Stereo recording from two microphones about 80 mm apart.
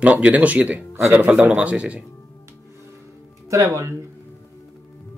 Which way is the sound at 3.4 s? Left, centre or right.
Right.